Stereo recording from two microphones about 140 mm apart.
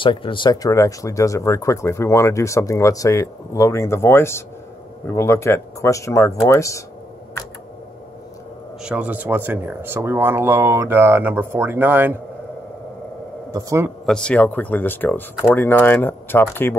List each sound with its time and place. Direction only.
0.0 s speech: 35° left (ahead or behind); by 6.8 s 20° left (ahead or behind)
8.8 s speech: 10° right (ahead or behind)
13.5 s a man's voice: 25° right (ahead or behind)
14.0 s speech: 5° left (ahead or behind)